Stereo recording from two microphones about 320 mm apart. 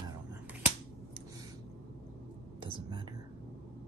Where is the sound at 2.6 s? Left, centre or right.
Centre.